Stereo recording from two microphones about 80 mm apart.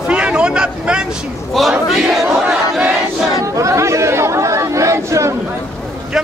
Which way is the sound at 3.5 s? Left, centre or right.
Right.